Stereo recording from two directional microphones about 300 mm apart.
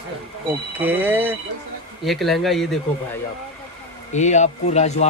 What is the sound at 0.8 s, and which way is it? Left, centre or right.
A man's voice, centre.